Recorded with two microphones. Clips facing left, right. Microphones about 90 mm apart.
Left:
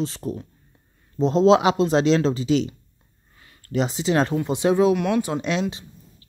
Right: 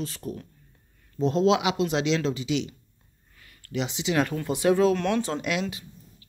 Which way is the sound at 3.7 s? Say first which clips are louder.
Left 5 dB; 40° left (ahead or behind).